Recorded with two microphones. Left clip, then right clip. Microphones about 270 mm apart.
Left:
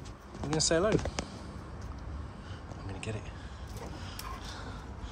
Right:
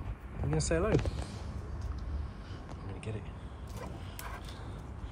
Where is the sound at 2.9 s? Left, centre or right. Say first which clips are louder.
Left 4 dB; centre.